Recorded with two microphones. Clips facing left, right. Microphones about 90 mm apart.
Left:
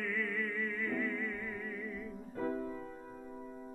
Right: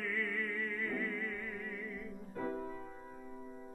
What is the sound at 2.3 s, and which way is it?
Music, 30° left (ahead or behind).